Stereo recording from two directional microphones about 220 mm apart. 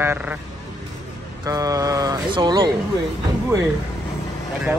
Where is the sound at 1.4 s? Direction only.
15° right (ahead or behind).